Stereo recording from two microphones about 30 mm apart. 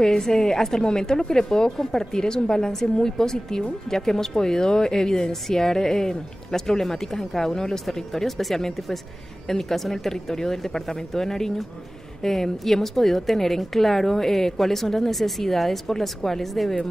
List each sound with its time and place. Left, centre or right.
0.2 s a woman's voice: left